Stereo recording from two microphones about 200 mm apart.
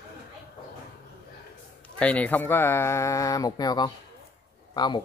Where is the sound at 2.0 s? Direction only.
5° left (ahead or behind).